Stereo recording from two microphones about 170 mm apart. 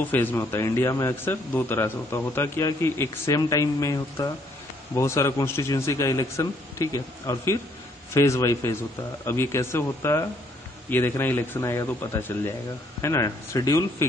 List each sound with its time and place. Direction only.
0.1 s a man's voice: 10° left (ahead or behind)